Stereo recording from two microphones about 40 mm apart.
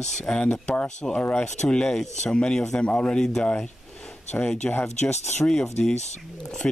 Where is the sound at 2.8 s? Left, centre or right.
Left.